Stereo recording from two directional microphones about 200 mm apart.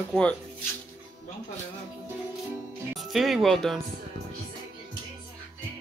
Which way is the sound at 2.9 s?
Centre (ahead or behind).